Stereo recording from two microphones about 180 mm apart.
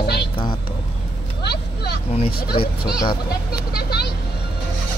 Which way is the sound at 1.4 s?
65° left (ahead or behind).